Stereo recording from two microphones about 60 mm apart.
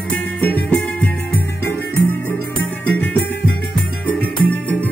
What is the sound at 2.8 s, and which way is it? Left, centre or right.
Music, left.